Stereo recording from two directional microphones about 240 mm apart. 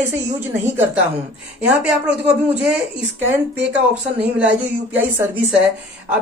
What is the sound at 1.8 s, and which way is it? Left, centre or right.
Speech, centre.